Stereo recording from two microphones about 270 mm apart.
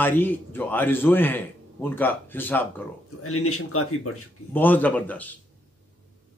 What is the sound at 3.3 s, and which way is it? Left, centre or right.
Speech, left.